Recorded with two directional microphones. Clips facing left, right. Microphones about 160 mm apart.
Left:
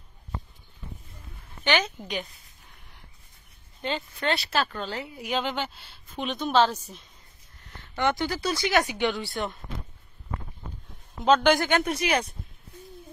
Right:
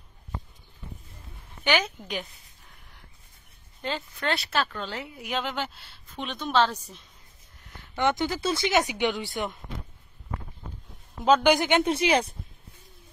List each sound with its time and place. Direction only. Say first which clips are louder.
1.6 s a woman's voice: even; 5° right (ahead or behind)
3.8 s speech: left 2 dB; centre (ahead or behind)
7.6 s speech: right 1 dB; 10° right (ahead or behind)
11.2 s speech: even; 10° right (ahead or behind); by 12.4 s 30° right (ahead or behind)